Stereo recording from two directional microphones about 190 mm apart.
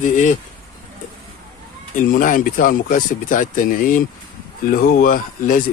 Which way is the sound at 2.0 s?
45° left (ahead or behind).